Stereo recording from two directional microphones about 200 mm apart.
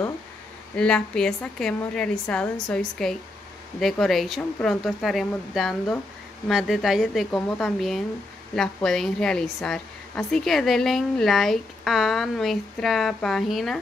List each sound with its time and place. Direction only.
0.7 s a woman's voice: 5° left (ahead or behind)